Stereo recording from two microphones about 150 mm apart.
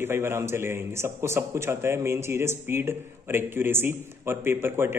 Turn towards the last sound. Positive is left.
turn(degrees=-15)  # may be behind; listen again after turning